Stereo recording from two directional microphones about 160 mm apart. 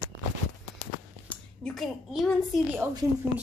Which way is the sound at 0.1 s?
90° right.